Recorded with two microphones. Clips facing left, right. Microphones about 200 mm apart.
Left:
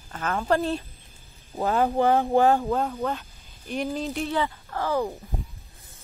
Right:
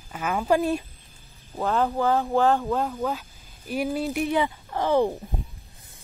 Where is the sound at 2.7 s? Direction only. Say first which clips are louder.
Even; centre (ahead or behind); by 5.1 s 25° right (ahead or behind).